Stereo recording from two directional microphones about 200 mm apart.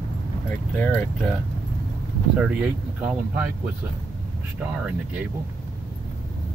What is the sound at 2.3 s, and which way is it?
Speech, 5° right (ahead or behind).